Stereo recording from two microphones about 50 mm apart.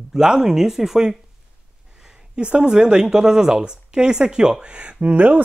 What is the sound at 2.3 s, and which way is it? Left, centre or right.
Speech, centre.